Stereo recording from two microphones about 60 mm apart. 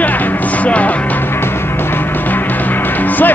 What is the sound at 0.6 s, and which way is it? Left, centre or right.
Music, left.